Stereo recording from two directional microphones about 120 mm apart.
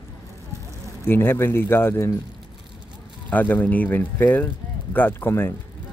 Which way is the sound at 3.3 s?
15° left (ahead or behind).